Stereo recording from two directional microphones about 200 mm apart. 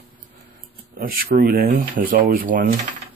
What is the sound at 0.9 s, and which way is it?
Speech, 50° right (ahead or behind).